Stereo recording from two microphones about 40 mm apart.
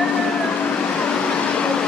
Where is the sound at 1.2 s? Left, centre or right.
Left.